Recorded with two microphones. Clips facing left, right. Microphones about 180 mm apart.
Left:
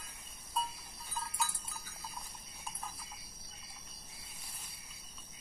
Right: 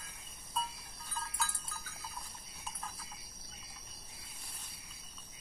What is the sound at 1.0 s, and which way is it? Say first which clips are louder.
Cowbell: left 1 dB; 15° left (ahead or behind).